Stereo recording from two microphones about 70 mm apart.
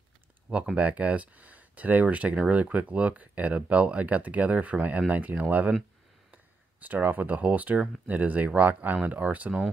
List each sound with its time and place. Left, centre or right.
0.5 s speech: centre